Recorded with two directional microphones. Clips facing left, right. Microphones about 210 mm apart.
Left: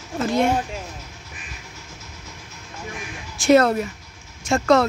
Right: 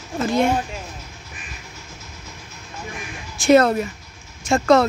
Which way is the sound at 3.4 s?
Centre (ahead or behind).